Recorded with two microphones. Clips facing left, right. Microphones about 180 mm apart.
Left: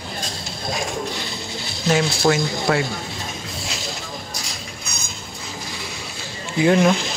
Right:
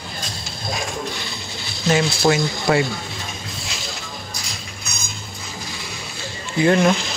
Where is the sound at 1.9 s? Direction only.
5° right (ahead or behind).